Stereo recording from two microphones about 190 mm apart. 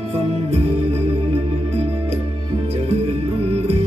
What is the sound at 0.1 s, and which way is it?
Music, 35° right (ahead or behind).